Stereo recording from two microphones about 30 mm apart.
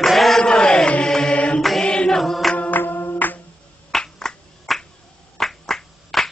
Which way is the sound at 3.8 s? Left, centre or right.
Centre.